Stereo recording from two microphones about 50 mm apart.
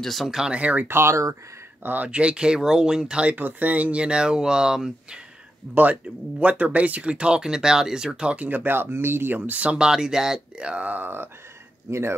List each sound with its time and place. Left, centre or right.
0.0 s speech: centre
0.3 s speech: centre
0.6 s speech: right
0.8 s speech: right
1.8 s speech: right
2.0 s speech: right
3.3 s speech: right; by 5.2 s centre
5.8 s speech: right
8.5 s speech: right
9.4 s speech: right; by 10.7 s centre
10.7 s speech: right
11.9 s speech: right